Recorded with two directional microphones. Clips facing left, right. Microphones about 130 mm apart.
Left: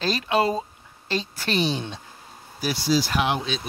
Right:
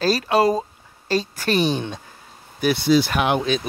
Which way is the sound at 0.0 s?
40° right (ahead or behind).